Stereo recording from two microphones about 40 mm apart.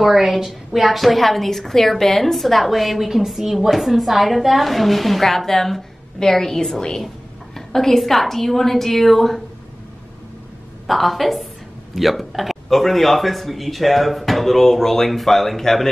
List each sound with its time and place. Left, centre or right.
0.0 s a woman's voice: centre
10.9 s a woman's voice: centre